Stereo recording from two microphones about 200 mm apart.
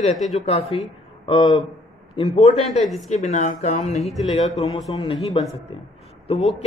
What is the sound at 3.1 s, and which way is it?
A man's voice, 35° left (ahead or behind).